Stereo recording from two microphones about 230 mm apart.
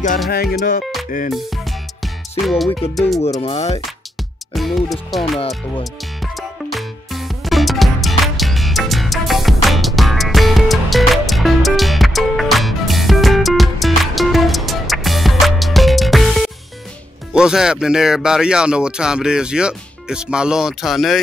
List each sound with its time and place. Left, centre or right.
0.3 s music: left
2.4 s speech: centre
3.3 s speech: left
4.6 s speech: centre
6.3 s music: centre
17.3 s speech: centre